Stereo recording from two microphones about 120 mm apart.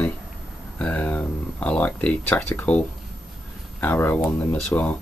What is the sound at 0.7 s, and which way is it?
Speech, 10° left (ahead or behind).